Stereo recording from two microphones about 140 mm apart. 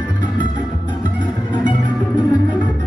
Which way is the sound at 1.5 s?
35° left (ahead or behind).